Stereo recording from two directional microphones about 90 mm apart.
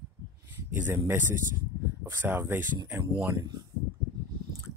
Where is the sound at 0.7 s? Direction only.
25° right (ahead or behind).